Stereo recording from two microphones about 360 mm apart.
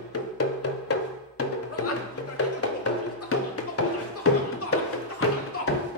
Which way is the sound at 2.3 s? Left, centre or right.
Left.